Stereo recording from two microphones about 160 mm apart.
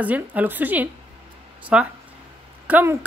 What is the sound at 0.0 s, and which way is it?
A woman's voice, 10° right (ahead or behind).